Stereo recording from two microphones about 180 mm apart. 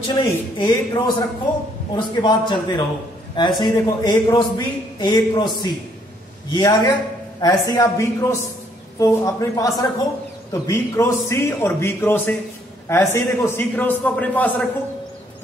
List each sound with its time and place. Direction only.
0.1 s a man's voice: 25° left (ahead or behind); by 14.7 s 10° left (ahead or behind)